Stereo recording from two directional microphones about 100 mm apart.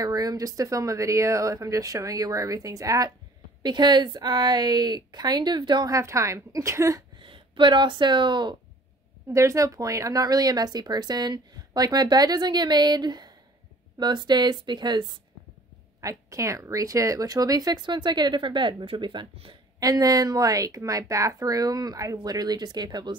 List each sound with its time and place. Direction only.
0.0 s a woman's voice: 40° right (ahead or behind)
3.6 s speech: 50° right (ahead or behind)
5.9 s a woman's voice: 30° right (ahead or behind)
7.2 s speech: 60° right (ahead or behind)
9.3 s a woman's voice: 30° right (ahead or behind)
16.0 s speech: 35° right (ahead or behind); by 19.5 s 60° right (ahead or behind)
19.8 s a woman's voice: 40° right (ahead or behind)